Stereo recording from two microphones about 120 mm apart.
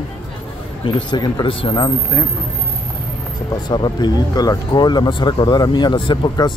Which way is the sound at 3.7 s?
40° left (ahead or behind).